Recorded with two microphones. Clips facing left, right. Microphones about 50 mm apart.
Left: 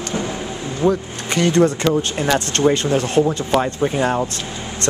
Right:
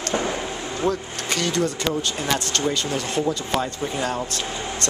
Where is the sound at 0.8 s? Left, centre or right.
Centre.